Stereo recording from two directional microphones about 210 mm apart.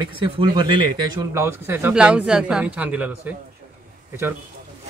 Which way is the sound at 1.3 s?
10° right (ahead or behind).